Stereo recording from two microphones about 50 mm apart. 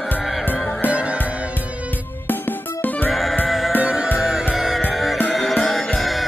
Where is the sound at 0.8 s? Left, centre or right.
Right.